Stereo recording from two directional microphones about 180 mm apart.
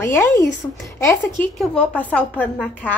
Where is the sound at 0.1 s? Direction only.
15° left (ahead or behind).